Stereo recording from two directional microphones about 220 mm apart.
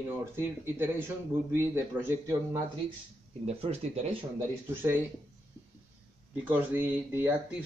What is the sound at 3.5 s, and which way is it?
Speech, 30° right (ahead or behind).